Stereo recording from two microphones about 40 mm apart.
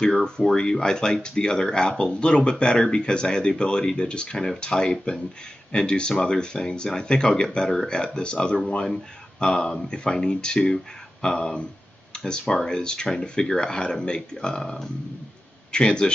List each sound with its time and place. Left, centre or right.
0.0 s speech: centre